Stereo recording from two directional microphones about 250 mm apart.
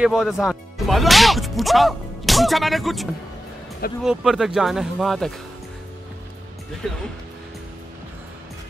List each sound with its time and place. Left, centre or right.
0.0 s speech: centre